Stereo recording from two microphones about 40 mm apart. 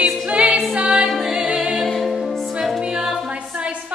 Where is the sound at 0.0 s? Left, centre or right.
Centre.